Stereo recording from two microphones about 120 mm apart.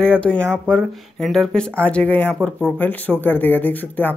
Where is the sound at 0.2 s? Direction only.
10° left (ahead or behind).